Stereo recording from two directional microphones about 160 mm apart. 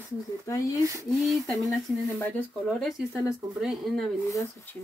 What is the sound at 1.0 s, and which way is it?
Speech, centre (ahead or behind).